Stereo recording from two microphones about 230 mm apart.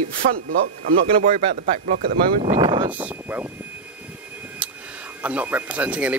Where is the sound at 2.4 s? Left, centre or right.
Centre.